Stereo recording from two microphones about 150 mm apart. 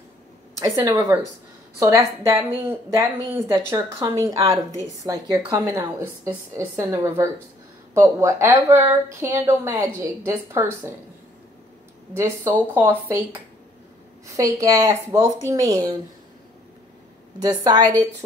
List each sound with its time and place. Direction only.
0.6 s a woman's voice: 20° right (ahead or behind)
12.2 s a woman's voice: 15° right (ahead or behind)
17.4 s a woman's voice: 25° right (ahead or behind)